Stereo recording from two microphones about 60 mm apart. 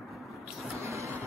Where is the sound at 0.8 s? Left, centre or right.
Right.